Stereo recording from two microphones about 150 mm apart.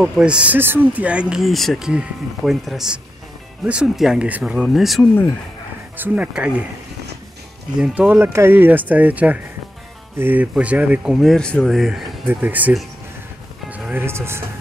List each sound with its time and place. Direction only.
0.0 s speech: 5° right (ahead or behind)
5.9 s speech: 10° right (ahead or behind)
7.7 s speech: 5° right (ahead or behind)
12.3 s speech: 10° right (ahead or behind)